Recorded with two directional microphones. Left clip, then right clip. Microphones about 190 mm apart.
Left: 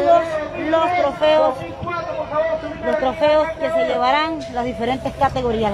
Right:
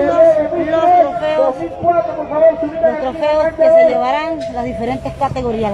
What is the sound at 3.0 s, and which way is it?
A woman's voice, centre (ahead or behind).